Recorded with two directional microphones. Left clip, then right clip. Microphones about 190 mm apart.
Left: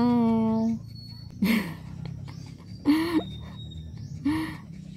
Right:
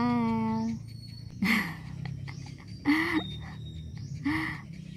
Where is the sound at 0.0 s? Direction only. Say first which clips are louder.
Left 5 dB; 15° right (ahead or behind).